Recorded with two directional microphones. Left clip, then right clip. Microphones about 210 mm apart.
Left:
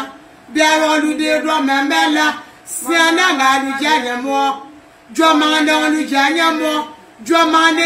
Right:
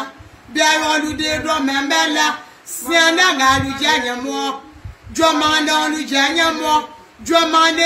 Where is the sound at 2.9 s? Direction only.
15° right (ahead or behind).